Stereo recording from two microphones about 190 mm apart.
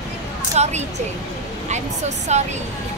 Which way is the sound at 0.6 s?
35° right (ahead or behind).